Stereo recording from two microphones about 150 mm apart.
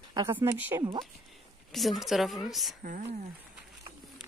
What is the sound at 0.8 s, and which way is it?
Speech, 30° right (ahead or behind).